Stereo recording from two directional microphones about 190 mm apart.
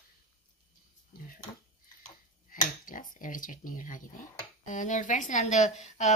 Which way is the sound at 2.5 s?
45° left (ahead or behind).